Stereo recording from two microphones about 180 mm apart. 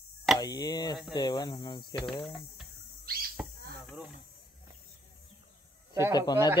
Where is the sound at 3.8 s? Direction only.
Centre (ahead or behind).